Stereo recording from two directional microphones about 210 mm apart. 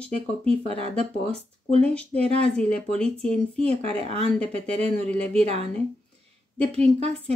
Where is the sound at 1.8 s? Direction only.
5° left (ahead or behind).